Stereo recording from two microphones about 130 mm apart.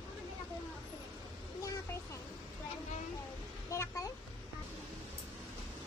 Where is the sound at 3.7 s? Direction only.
25° left (ahead or behind).